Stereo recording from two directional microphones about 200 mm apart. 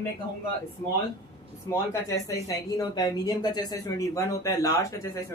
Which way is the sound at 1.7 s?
15° left (ahead or behind).